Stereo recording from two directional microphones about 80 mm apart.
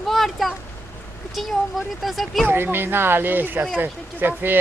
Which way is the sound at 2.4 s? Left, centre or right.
Right.